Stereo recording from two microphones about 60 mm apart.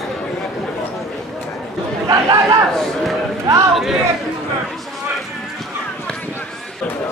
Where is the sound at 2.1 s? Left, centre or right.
Right.